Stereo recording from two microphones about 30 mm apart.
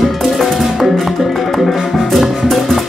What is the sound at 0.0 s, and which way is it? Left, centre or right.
Music, centre.